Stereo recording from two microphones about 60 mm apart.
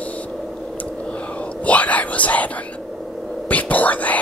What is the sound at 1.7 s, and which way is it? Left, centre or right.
Whispering, left.